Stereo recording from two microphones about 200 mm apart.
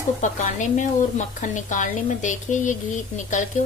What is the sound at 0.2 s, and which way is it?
A woman's voice, 40° left (ahead or behind).